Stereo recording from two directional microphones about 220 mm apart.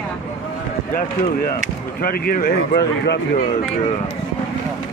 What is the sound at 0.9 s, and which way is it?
Speech, 40° left (ahead or behind).